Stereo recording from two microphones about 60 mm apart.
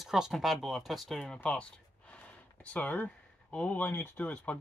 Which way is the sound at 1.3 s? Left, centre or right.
Centre.